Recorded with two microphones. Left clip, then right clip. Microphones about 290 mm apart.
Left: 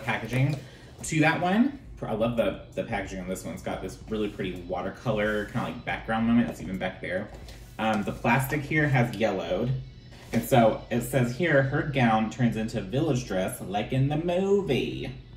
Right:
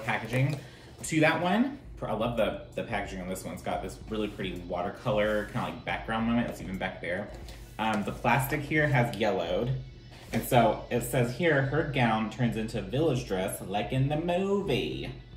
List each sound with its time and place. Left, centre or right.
0.0 s speech: centre
10.5 s speech: centre